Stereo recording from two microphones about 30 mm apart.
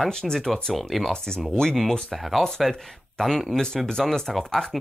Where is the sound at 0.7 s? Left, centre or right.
Centre.